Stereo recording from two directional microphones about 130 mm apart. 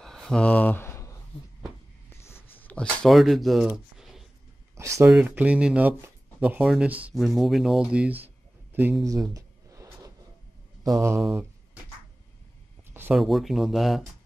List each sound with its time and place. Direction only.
0.0 s a sound: 5° left (ahead or behind)
4.7 s speech: 20° right (ahead or behind)
5.1 s speech: 10° right (ahead or behind)
9.0 s a sound: 25° right (ahead or behind)
10.8 s mantra: 25° right (ahead or behind)
13.1 s speech: centre (ahead or behind)